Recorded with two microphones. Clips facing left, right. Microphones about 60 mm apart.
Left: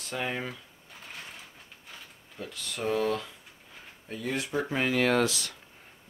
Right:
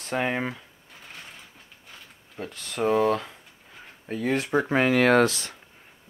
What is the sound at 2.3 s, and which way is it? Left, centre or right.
Speech, right.